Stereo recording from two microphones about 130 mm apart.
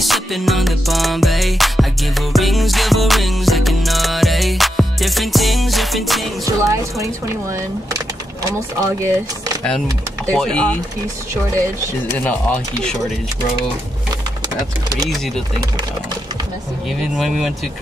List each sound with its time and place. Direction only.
0.0 s music: centre (ahead or behind)
6.4 s music: 25° right (ahead or behind)
8.5 s speech: 25° right (ahead or behind)
10.2 s speech: 10° left (ahead or behind)
12.1 s speech: 15° left (ahead or behind)